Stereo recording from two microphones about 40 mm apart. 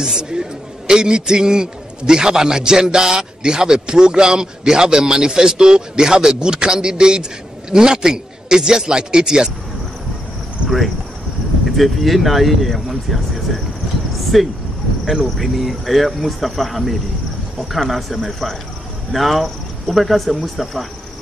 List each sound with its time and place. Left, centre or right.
0.2 s a man's voice: centre
11.7 s speech: centre